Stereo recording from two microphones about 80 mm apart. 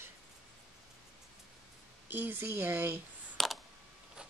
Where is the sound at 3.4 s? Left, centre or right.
Centre.